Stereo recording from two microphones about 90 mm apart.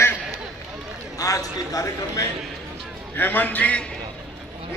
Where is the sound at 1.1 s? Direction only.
40° left (ahead or behind).